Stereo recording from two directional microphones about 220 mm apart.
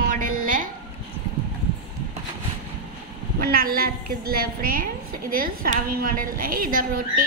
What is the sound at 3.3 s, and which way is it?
A woman's voice, 45° right (ahead or behind).